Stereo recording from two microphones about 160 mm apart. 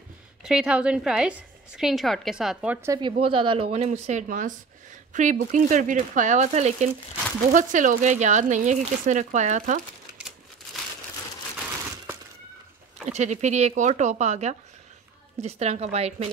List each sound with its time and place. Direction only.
0.4 s a woman's voice: 5° right (ahead or behind)
3.0 s a woman's voice: 35° right (ahead or behind); by 9.8 s 55° right (ahead or behind)
13.0 s a woman's voice: 45° right (ahead or behind)